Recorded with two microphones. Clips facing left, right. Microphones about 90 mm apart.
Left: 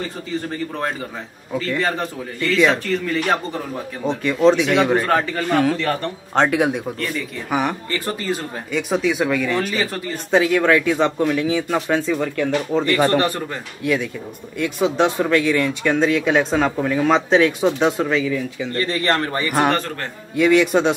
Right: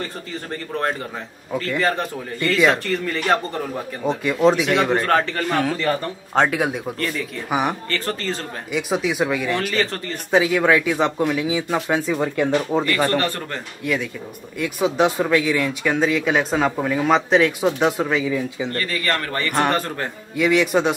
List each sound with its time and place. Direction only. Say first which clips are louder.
0.5 s a man's voice: even; centre (ahead or behind)
7.9 s speech: left 1 dB; 15° left (ahead or behind)
8.7 s a man's voice: left 2 dB; 5° right (ahead or behind)
12.2 s speech: right 1 dB; 20° right (ahead or behind)
12.9 s speech: left 6 dB; 20° left (ahead or behind)
13.8 s a man's voice: left 3 dB; centre (ahead or behind)
18.8 s speech: left 6 dB; 25° left (ahead or behind)
19.4 s a man's voice: even; 5° left (ahead or behind)